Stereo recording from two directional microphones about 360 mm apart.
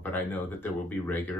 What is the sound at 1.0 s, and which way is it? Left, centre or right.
Speech, centre.